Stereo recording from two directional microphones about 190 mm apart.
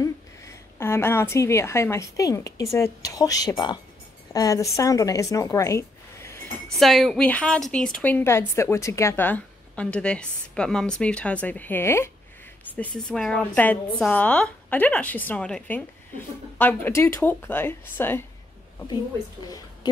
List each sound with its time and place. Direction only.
0.0 s a woman's voice: 15° left (ahead or behind)
6.8 s a woman's voice: centre (ahead or behind)